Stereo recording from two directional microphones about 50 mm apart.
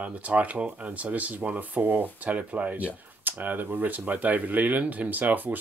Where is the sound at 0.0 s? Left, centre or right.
Right.